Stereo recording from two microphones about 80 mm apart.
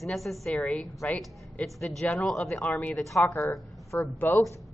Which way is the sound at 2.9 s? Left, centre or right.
Centre.